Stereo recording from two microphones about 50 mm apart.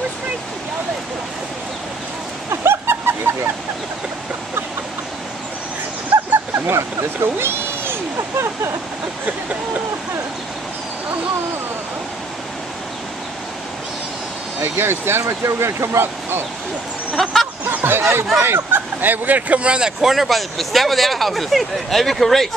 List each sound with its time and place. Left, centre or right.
2.5 s a sound: right
6.1 s a sound: right
6.5 s speech: right
14.6 s speech: right
15.2 s speech: right
17.2 s vehicle: centre
17.6 s speech: right
20.0 s speech: centre